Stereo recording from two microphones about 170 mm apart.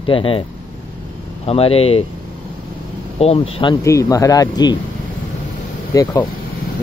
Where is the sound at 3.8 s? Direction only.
20° left (ahead or behind).